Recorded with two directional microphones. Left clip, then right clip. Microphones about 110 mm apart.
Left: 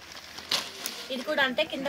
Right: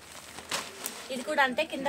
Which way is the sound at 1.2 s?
35° right (ahead or behind).